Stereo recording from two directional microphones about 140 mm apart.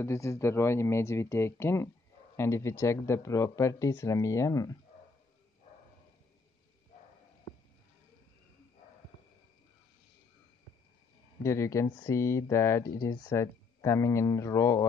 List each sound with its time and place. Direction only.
0.0 s speech: 20° left (ahead or behind)
11.4 s speech: 20° left (ahead or behind)